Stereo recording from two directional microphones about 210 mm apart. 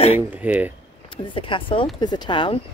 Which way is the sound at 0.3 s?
5° right (ahead or behind).